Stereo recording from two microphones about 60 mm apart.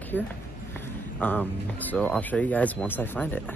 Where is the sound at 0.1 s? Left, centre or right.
Left.